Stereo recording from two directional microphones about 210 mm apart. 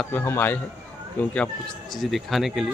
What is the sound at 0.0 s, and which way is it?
Speech, 10° left (ahead or behind).